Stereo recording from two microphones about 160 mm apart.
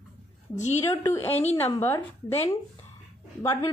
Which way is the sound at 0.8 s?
20° left (ahead or behind).